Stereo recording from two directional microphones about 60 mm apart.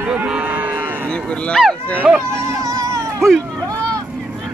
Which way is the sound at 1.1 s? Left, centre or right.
Centre.